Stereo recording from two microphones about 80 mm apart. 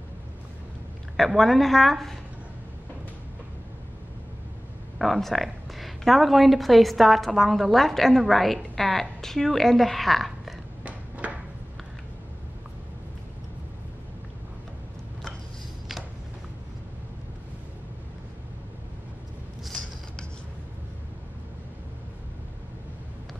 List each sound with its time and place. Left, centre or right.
1.1 s a woman's voice: centre
4.9 s a woman's voice: centre
10.8 s a sound: centre